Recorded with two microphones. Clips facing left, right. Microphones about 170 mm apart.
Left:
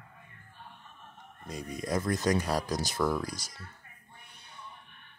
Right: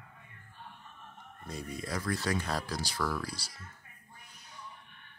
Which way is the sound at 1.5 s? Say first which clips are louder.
Left 4 dB; 15° left (ahead or behind).